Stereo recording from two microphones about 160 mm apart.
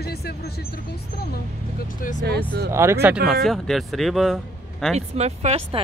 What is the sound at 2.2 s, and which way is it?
Speech, 85° right.